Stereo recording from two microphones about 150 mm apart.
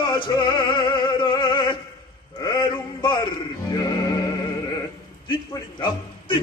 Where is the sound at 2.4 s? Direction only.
30° left (ahead or behind).